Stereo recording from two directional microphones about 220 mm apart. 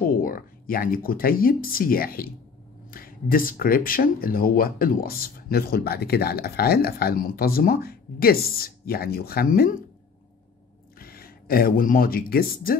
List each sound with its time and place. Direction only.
0.0 s speech: 40° left (ahead or behind)
11.0 s speech: 40° left (ahead or behind)